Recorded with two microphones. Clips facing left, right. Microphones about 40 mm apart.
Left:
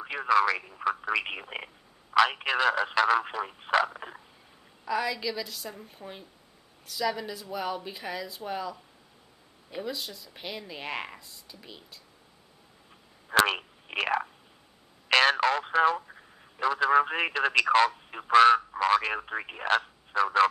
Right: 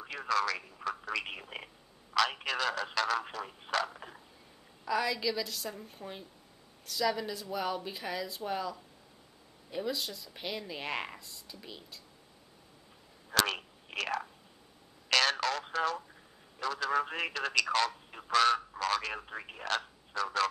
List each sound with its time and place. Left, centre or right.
0.0 s speech: left
4.8 s a woman's voice: centre
13.3 s telephone: left
15.0 s radio: left
20.1 s speech: left